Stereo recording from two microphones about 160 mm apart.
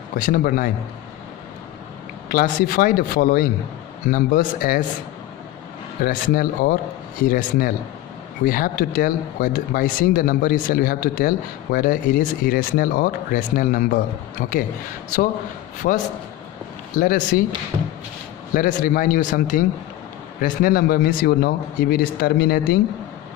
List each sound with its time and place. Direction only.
0.2 s speech: 65° left (ahead or behind)
2.2 s speech: 60° left (ahead or behind)
6.0 s speech: 65° left (ahead or behind)
15.8 s speech: 65° left (ahead or behind)
18.5 s speech: 60° left (ahead or behind)